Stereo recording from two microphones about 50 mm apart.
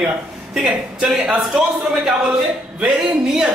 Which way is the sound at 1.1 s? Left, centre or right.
Centre.